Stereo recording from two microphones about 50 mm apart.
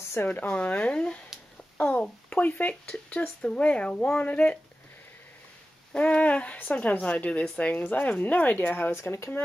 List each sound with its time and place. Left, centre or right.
0.3 s speech: left
2.7 s speech: centre
5.9 s speech: left
8.9 s speech: left